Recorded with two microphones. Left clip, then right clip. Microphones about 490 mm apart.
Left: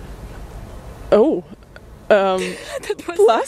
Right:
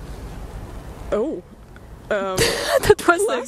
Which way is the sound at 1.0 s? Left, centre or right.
Left.